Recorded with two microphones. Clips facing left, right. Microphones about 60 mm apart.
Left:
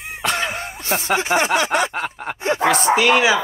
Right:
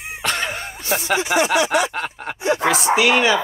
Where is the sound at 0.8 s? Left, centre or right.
Left.